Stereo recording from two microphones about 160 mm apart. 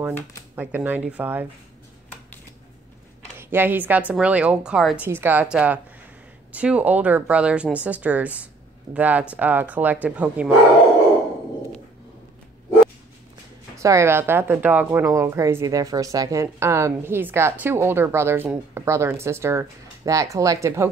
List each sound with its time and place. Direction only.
0.6 s speech: 10° right (ahead or behind)
3.3 s speech: 15° right (ahead or behind)
13.7 s speech: 20° right (ahead or behind)